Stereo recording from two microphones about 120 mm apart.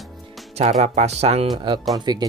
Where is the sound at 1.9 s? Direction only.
35° right (ahead or behind).